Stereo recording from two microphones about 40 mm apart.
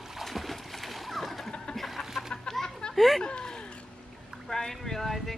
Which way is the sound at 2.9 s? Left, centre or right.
Centre.